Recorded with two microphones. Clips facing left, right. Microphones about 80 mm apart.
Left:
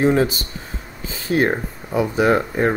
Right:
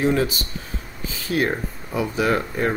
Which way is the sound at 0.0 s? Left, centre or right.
Left.